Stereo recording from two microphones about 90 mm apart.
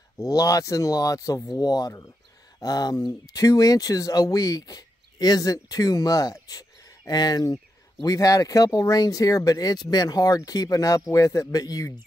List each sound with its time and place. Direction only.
0.2 s speech: 40° left (ahead or behind)